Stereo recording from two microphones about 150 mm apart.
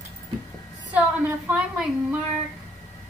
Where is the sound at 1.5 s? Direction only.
10° right (ahead or behind).